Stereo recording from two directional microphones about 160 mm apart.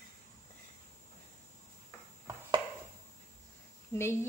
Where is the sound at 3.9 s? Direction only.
15° left (ahead or behind).